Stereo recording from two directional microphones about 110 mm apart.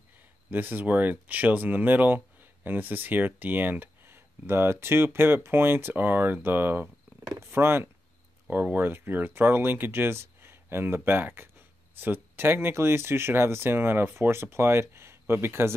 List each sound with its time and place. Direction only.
0.5 s speech: 15° right (ahead or behind)